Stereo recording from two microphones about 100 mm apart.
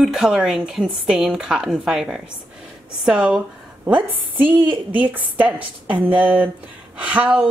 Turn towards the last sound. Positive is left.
turn(degrees=-15)  # may be behind; listen again after turning